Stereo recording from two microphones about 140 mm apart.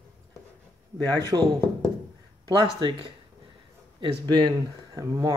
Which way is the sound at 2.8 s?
35° right (ahead or behind).